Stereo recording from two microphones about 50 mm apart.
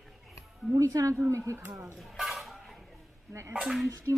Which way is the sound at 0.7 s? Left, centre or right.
Right.